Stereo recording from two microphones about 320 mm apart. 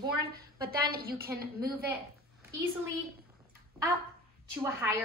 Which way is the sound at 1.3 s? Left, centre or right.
Centre.